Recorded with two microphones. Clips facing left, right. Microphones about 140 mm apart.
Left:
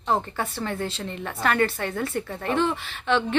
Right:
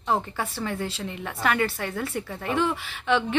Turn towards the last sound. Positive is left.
turn(degrees=-10)  # may be behind; listen again after turning